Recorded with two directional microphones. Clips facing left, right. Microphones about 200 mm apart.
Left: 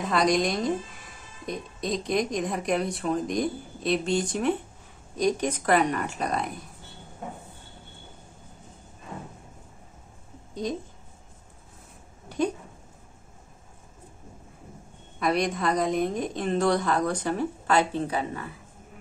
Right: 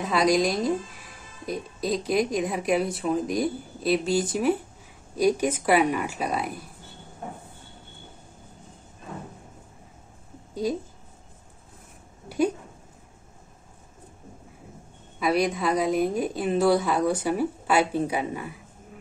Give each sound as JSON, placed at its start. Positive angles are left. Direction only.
{"t": 0.0, "sound": "a woman's voice", "side_deg": 0}
{"t": 10.5, "sound": "a woman's voice", "side_deg": -5}
{"t": 15.1, "sound": "a woman's voice", "side_deg": -5}